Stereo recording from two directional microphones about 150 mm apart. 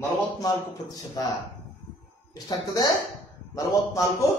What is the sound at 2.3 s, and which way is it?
Speech, 25° left (ahead or behind).